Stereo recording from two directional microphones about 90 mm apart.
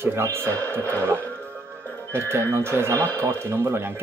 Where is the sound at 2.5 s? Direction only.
30° right (ahead or behind).